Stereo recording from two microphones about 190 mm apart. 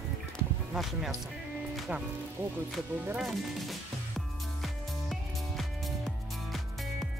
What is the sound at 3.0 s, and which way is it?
Speech, 5° right (ahead or behind).